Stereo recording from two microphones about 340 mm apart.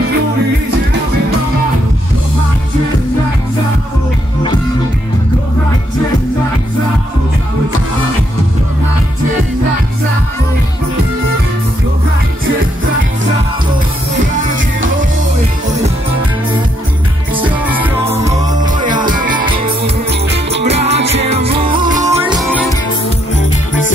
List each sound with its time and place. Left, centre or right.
17.3 s music: centre
19.0 s music: right; by 22.7 s centre